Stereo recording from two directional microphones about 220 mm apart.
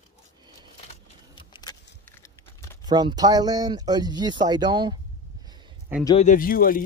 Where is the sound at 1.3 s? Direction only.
20° left (ahead or behind).